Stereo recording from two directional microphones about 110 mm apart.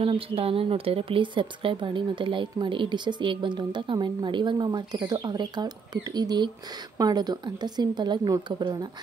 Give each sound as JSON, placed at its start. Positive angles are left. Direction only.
{"t": 0.0, "sound": "a woman's voice", "side_deg": -60}